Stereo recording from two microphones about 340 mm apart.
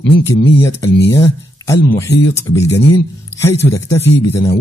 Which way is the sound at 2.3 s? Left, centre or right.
Centre.